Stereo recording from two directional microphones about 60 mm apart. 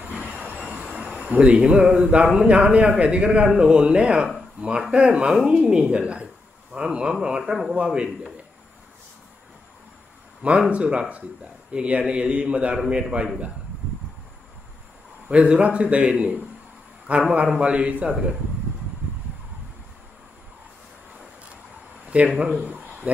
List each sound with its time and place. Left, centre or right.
0.0 s train: right
0.9 s a sound: centre
1.3 s a man's voice: centre
10.7 s a man's voice: centre
15.2 s speech: right
22.1 s speech: right